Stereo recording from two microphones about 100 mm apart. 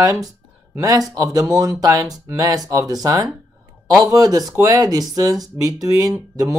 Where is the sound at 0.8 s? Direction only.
35° right (ahead or behind).